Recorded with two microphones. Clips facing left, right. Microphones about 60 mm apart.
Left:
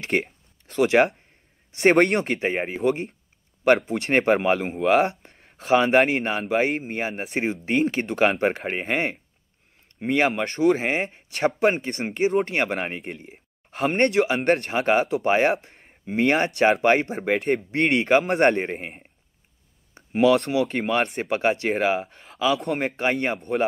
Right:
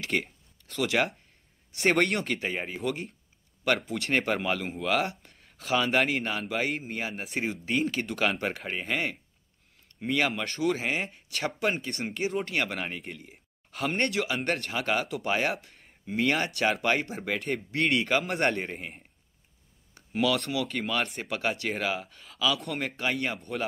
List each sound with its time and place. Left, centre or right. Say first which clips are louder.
0.0 s a sound: left 5 dB; left
1.8 s speech: left 7 dB; left
4.8 s a man's voice: left 9 dB; left
18.2 s a man's voice: left 8 dB; left
18.6 s speech: left 7 dB; left
19.9 s a sound: left 9 dB; left
20.4 s speech: left 7 dB; left
22.7 s a man's voice: left 7 dB; left
22.9 s speech: left 6 dB; left